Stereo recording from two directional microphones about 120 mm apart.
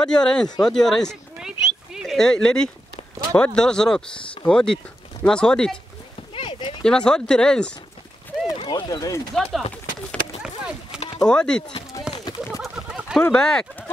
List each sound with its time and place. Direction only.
0.0 s speech: 5° left (ahead or behind)
6.3 s clip-clop: 45° left (ahead or behind)
6.8 s speech: 5° left (ahead or behind)
8.5 s speech: 40° left (ahead or behind)
9.3 s speech: 5° left (ahead or behind)
10.4 s a sound: 5° right (ahead or behind)
11.1 s speech: 5° left (ahead or behind)
12.1 s a sound: 5° right (ahead or behind)
13.2 s speech: 5° left (ahead or behind)